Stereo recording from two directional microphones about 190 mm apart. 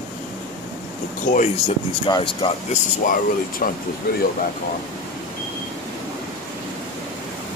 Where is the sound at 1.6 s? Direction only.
25° left (ahead or behind).